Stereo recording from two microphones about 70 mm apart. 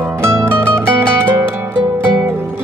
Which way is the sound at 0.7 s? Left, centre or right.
Right.